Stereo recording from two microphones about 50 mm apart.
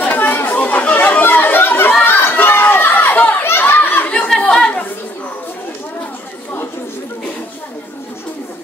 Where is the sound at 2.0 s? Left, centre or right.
Left.